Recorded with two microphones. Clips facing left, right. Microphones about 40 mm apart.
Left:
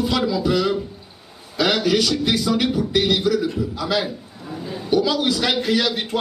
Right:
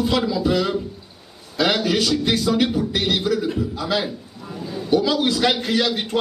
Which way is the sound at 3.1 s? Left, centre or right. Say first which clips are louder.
Left 1 dB; centre.